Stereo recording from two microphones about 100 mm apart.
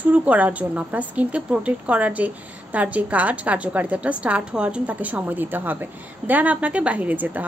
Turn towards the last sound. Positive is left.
turn(degrees=-15)  # may be behind; listen again after turning